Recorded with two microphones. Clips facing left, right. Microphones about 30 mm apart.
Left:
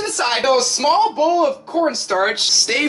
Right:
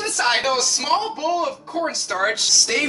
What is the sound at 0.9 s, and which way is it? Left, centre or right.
A man's voice, left.